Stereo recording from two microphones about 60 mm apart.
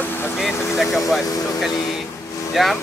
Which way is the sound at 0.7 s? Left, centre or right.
Centre.